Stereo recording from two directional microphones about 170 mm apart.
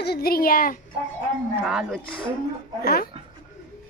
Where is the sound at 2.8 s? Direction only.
65° left (ahead or behind).